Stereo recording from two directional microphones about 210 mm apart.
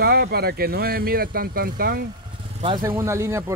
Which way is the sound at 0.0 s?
50° right (ahead or behind).